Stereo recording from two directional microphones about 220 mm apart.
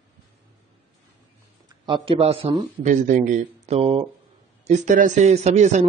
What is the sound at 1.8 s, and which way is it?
A man's voice, 20° right (ahead or behind).